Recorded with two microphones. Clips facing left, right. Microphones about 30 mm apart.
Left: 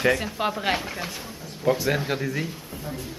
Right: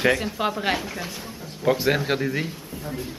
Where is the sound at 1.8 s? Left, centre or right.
Right.